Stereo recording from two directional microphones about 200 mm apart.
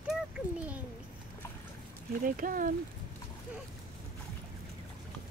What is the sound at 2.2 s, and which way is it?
Speech, 45° right (ahead or behind).